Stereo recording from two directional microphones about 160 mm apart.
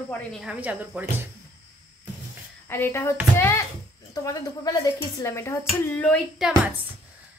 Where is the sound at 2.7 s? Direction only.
15° left (ahead or behind).